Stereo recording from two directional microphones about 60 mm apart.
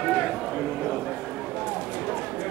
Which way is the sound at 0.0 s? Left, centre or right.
Centre.